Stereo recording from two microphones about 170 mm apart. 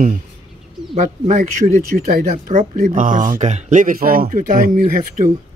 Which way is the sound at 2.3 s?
45° right (ahead or behind).